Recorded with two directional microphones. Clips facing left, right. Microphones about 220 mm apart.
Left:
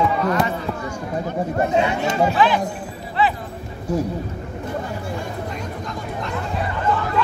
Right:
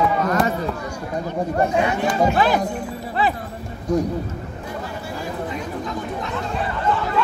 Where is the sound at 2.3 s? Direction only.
40° right (ahead or behind).